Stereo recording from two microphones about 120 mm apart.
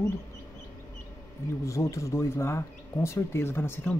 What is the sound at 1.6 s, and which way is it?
Speech, 25° left (ahead or behind).